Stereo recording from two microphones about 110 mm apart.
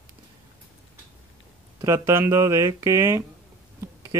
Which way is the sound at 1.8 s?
25° right (ahead or behind).